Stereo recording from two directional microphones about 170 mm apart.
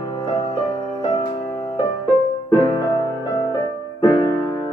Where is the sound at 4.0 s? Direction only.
25° left (ahead or behind).